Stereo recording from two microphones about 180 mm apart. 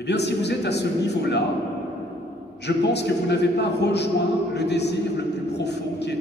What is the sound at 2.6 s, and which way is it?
A man's voice, 70° left (ahead or behind).